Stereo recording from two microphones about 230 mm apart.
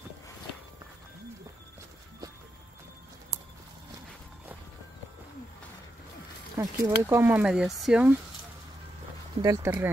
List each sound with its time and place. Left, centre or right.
3.3 s horse: centre
6.5 s speech: centre
9.4 s speech: centre